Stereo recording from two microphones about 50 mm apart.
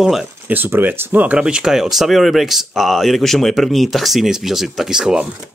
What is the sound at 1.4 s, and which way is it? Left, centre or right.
Speech, centre.